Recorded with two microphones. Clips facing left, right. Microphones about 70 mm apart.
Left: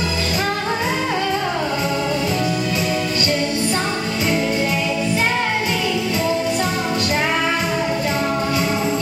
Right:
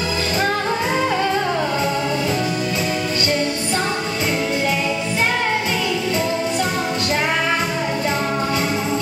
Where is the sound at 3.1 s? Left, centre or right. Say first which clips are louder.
Even; right.